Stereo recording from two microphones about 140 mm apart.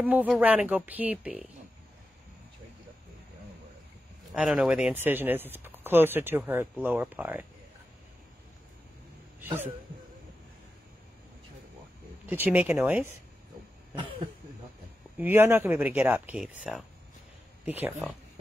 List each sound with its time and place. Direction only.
0.0 s speech: 10° right (ahead or behind)
4.3 s speech: 5° right (ahead or behind)
9.4 s speech: 15° right (ahead or behind)
12.3 s speech: 10° right (ahead or behind)
15.1 s speech: 15° right (ahead or behind)